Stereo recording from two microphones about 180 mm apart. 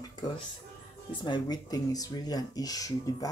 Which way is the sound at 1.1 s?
25° left (ahead or behind).